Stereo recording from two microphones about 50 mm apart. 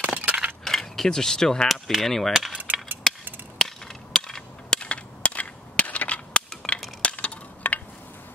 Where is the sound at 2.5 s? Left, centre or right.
Right.